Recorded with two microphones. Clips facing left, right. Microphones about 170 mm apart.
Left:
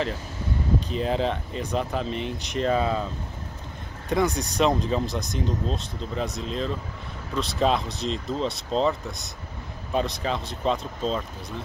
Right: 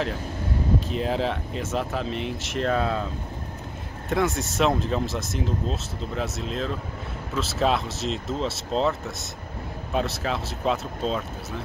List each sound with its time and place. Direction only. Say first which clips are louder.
0.7 s speech: left 2 dB; centre (ahead or behind)
4.1 s speech: left 1 dB; centre (ahead or behind)